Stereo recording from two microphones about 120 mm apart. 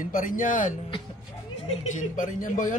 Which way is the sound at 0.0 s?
90° left.